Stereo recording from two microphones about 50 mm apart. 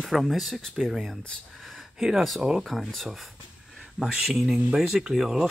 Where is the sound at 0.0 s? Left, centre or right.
Centre.